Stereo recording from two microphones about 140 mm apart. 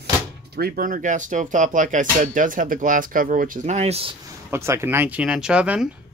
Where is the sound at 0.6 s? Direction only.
90° right; by 4.2 s 45° right (ahead or behind).